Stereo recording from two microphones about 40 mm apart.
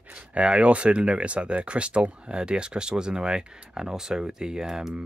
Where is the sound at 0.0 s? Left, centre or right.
Right.